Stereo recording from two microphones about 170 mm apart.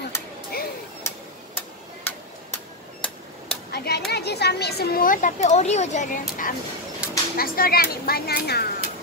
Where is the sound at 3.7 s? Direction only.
65° left (ahead or behind).